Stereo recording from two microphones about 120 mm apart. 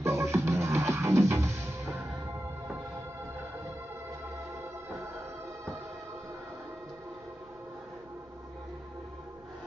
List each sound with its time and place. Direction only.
0.0 s music: 25° right (ahead or behind)